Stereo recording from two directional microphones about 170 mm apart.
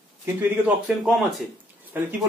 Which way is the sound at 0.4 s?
10° right (ahead or behind).